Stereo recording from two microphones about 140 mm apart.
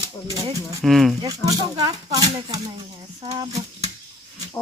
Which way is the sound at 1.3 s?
25° right (ahead or behind).